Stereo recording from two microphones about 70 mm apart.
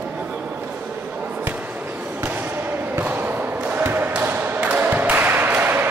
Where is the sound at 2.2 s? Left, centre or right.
Right.